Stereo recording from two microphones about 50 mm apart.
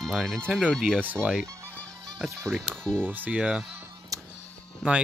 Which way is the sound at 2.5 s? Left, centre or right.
Centre.